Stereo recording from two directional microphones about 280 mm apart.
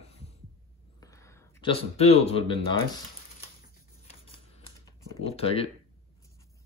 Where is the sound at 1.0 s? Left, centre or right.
Centre.